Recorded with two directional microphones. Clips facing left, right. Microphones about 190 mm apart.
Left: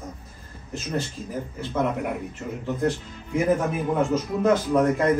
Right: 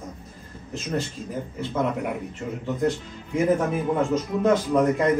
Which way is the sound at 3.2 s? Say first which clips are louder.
Right 1 dB; centre (ahead or behind).